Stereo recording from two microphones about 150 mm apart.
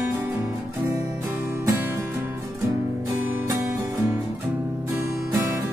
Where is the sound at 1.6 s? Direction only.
15° right (ahead or behind).